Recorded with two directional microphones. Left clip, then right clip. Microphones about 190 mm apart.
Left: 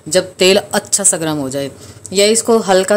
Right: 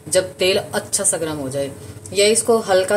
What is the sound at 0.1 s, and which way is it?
Speech, 60° left (ahead or behind).